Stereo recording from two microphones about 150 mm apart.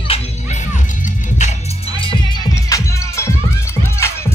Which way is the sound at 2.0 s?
30° left (ahead or behind).